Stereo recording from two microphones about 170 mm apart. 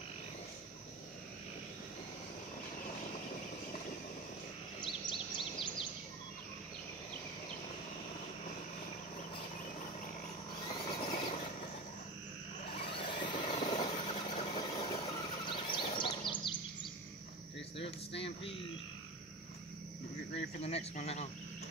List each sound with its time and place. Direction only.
4.7 s bird vocalization: 30° left (ahead or behind)
10.9 s vehicle: 30° left (ahead or behind)
12.9 s vehicle: 30° left (ahead or behind)
15.0 s a sound: 30° left (ahead or behind)
17.7 s a sound: 35° left (ahead or behind)
20.6 s speech: 40° left (ahead or behind)